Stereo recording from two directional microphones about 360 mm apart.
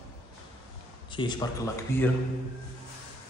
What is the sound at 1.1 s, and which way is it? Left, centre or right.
Speech, centre.